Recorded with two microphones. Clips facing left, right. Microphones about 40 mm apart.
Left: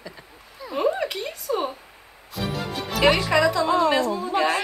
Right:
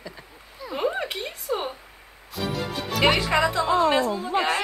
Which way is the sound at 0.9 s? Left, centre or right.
Right.